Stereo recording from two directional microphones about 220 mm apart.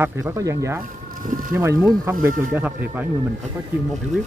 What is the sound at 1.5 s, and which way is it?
Speech, 10° right (ahead or behind).